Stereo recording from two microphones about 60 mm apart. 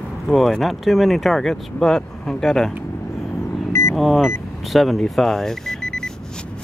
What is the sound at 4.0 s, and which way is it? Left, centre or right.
Speech, centre.